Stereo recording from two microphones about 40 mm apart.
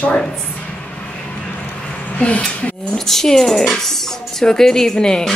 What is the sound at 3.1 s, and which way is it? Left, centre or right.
Speech, centre.